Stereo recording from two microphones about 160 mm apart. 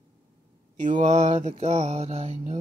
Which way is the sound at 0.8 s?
50° right (ahead or behind).